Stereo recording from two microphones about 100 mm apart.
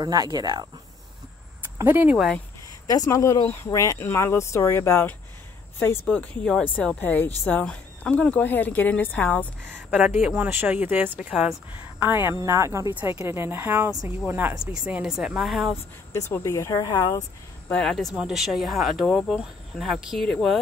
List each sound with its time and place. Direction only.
0.0 s speech: 45° right (ahead or behind)
1.9 s speech: 20° right (ahead or behind)
3.1 s speech: 30° left (ahead or behind)
6.0 s speech: 10° left (ahead or behind)
9.8 s speech: 15° right (ahead or behind)
11.1 s speech: 5° right (ahead or behind)
12.0 s speech: 20° right (ahead or behind)
14.9 s speech: 5° right (ahead or behind)
16.1 s speech: 30° left (ahead or behind)
17.6 s speech: 15° left (ahead or behind)
18.1 s speech: 5° right (ahead or behind)